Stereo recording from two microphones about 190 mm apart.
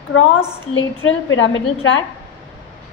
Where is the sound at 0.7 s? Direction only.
90° left.